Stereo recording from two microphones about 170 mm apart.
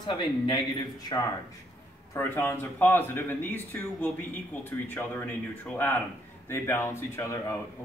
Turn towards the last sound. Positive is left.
turn(degrees=15)  # may be behind; listen again after turning